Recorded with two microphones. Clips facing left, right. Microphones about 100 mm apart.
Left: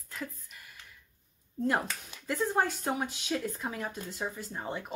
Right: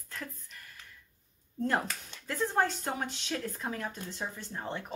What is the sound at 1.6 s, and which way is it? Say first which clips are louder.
Speech: left 1 dB; 10° left (ahead or behind).